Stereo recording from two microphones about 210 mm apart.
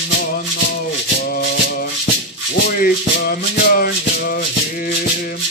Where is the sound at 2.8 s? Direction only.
45° left (ahead or behind).